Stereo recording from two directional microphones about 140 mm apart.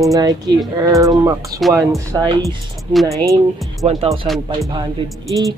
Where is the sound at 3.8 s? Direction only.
50° right (ahead or behind).